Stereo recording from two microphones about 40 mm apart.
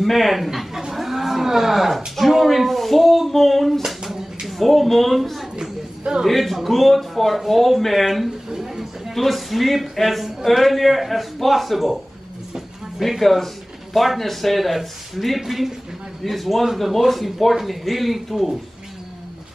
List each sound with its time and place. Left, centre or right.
0.0 s speech: centre
4.5 s speech: centre
5.6 s a sound: centre
6.2 s speech: centre
8.5 s a sound: centre
9.1 s speech: centre
13.1 s speech: centre